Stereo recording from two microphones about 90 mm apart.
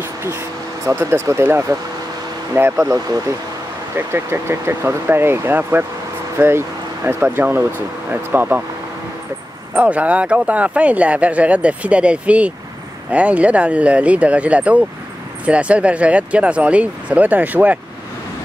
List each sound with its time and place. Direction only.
0.0 s vehicle: 25° right (ahead or behind)
0.9 s speech: 35° right (ahead or behind)
9.8 s speech: 15° right (ahead or behind)